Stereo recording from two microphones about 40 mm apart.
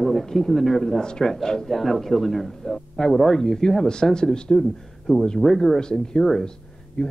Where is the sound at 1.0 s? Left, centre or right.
Centre.